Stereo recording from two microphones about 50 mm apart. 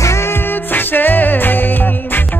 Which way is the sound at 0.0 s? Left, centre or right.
Left.